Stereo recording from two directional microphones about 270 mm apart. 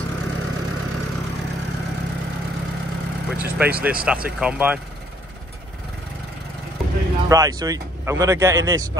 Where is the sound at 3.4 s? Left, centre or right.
Centre.